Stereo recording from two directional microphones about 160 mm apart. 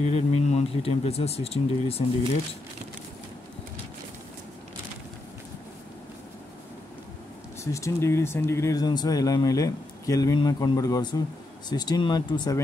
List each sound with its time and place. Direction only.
0.0 s speech: 40° left (ahead or behind)
7.6 s speech: 20° left (ahead or behind)